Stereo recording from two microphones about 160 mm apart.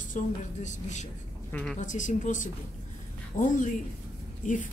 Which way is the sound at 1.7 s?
50° left (ahead or behind).